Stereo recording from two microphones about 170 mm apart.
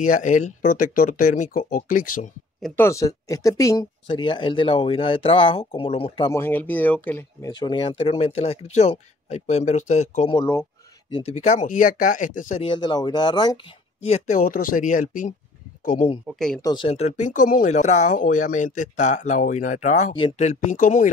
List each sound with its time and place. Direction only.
0.0 s speech: 50° left (ahead or behind)
2.6 s speech: 10° left (ahead or behind); by 6.3 s 30° left (ahead or behind)
6.3 s speech: 10° left (ahead or behind)
7.5 s speech: 25° left (ahead or behind); by 10.3 s 45° left (ahead or behind)
10.3 s speech: 15° left (ahead or behind)
11.1 s speech: 30° left (ahead or behind)
11.3 s speech: 45° left (ahead or behind)
12.6 s speech: 25° left (ahead or behind)
14.0 s speech: 40° left (ahead or behind)
16.3 s speech: 5° left (ahead or behind)
16.6 s speech: 30° left (ahead or behind); by 21.1 s 50° left (ahead or behind)